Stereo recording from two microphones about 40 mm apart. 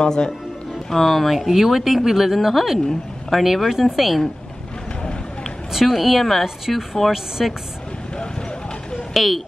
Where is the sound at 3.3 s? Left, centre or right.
Centre.